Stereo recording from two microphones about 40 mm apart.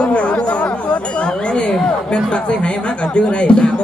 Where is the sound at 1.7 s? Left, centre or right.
Left.